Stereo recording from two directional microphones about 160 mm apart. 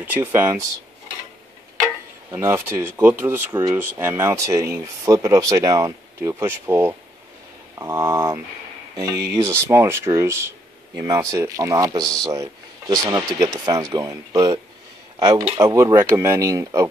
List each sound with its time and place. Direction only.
0.0 s speech: 10° right (ahead or behind)
2.3 s speech: 15° right (ahead or behind)